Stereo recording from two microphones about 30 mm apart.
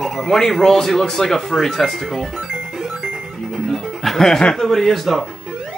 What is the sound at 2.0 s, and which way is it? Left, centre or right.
Speech, centre.